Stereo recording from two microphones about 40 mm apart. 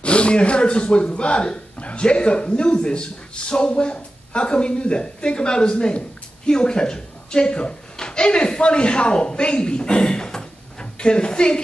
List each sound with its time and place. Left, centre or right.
0.0 s a man's voice: left